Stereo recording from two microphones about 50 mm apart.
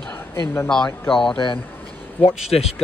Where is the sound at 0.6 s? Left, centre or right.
Centre.